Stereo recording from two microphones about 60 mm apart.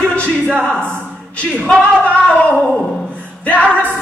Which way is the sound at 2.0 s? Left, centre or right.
Left.